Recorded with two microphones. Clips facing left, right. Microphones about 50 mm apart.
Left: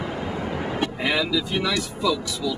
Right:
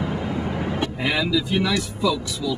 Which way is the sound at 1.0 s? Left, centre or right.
Centre.